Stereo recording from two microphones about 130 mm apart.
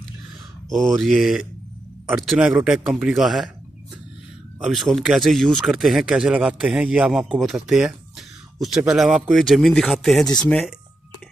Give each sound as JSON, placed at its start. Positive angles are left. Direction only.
{"t": 0.7, "sound": "speech", "side_deg": 0}
{"t": 4.6, "sound": "speech", "side_deg": 0}